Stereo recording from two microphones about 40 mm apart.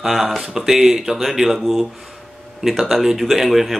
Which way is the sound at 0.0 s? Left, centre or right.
Centre.